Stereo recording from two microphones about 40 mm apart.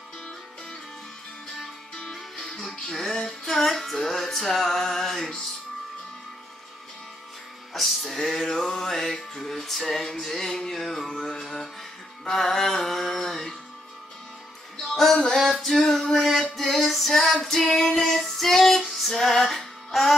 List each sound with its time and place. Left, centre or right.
2.3 s music: centre
7.7 s music: centre
14.8 s a sound: centre
16.5 s music: centre
17.6 s child singing: centre
19.1 s music: centre